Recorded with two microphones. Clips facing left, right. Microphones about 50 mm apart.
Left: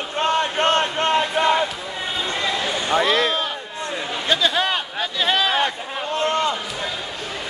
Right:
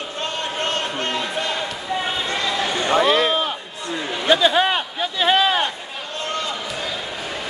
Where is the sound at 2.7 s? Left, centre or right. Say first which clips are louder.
Right 3 dB; right.